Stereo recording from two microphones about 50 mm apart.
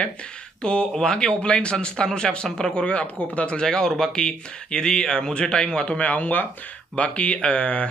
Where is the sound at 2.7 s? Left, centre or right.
Left.